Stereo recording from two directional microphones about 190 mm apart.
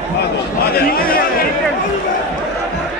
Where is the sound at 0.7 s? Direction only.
50° left (ahead or behind).